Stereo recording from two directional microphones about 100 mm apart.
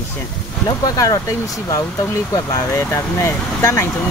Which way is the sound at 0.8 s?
35° left (ahead or behind).